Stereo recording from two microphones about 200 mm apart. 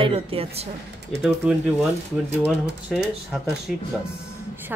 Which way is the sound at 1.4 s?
5° right (ahead or behind).